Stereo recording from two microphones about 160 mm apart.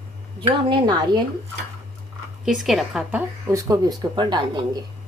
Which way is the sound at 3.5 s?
20° right (ahead or behind).